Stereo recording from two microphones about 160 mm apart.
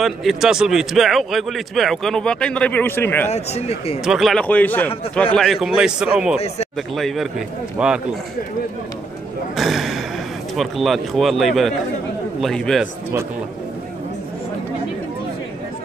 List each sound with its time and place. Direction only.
0.0 s speech: centre (ahead or behind)
3.3 s speech: 40° left (ahead or behind)
4.0 s a man's voice: 5° right (ahead or behind)
9.6 s a sound: centre (ahead or behind)
10.5 s speech: centre (ahead or behind)